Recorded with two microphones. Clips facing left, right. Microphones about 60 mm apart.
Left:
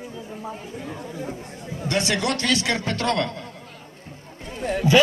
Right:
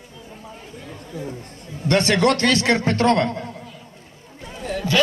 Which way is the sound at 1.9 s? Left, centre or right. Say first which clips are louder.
Right 6 dB; right.